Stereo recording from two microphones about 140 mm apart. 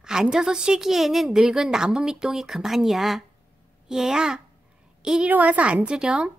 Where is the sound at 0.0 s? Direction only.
5° right (ahead or behind).